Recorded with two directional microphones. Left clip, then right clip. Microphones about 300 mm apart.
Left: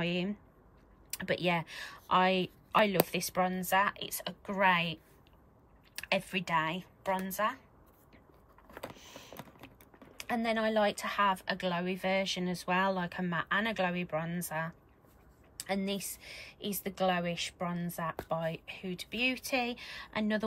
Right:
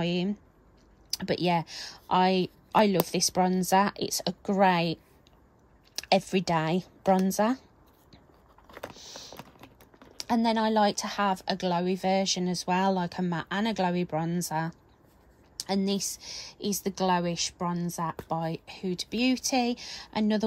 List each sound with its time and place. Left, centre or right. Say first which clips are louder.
0.0 s speech: right 4 dB; centre
5.9 s a woman's voice: right 7 dB; centre
8.6 s vehicle: right 3 dB; centre
8.9 s typing: right 7 dB; centre
9.3 s typing: right 3 dB; centre
10.1 s speech: right 6 dB; centre